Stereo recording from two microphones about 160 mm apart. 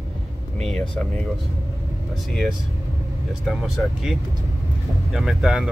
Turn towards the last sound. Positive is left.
turn(degrees=0)  # may be behind; listen again after turning